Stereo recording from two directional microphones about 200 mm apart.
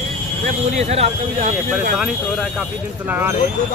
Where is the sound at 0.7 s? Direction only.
30° right (ahead or behind).